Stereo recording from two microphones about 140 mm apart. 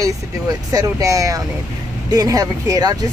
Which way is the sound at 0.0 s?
25° right (ahead or behind).